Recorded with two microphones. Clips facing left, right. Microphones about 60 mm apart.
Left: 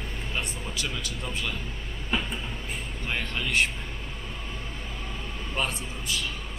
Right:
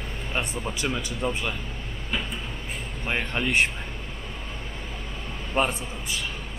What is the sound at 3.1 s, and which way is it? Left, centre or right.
Speech, right.